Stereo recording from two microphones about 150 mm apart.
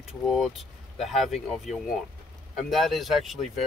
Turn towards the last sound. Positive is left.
turn(degrees=0)  # may be behind; listen again after turning